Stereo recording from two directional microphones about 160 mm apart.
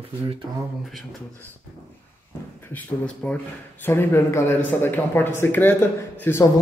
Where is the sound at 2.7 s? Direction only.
5° left (ahead or behind).